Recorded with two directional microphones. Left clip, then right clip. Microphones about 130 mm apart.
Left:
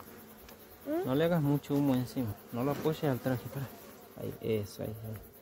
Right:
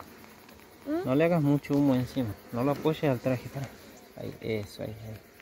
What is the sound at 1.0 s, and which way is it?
Speech, 10° left (ahead or behind).